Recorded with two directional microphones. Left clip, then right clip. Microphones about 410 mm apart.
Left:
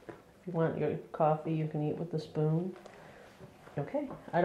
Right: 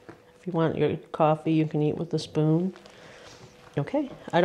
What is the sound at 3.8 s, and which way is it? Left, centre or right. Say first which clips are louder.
Speech: right 7 dB; right.